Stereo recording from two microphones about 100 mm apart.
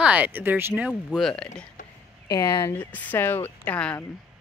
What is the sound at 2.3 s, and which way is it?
Speech, 35° left (ahead or behind).